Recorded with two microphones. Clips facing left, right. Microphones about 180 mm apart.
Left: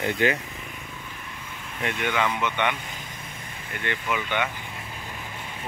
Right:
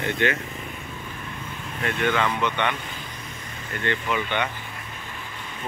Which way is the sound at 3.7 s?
15° left (ahead or behind).